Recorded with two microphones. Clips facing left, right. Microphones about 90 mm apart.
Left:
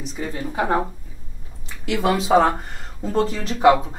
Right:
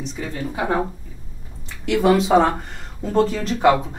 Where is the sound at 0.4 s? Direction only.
30° left (ahead or behind).